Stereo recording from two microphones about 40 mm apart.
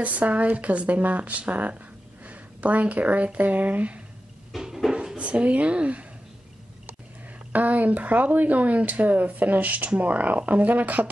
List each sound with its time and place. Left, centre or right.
0.0 s speech: right
4.5 s a sound: centre
5.1 s speech: right
7.5 s speech: right